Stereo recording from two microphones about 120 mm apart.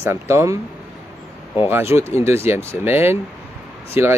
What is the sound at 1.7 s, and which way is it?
Speech, 20° right (ahead or behind).